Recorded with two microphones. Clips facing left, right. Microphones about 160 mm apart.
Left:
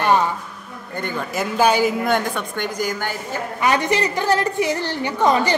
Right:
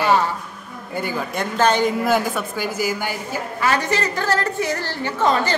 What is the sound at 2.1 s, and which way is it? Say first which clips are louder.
A woman's voice: right 1 dB; 5° right (ahead or behind).